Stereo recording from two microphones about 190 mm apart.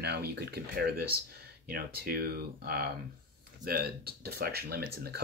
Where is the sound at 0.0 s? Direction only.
60° right (ahead or behind).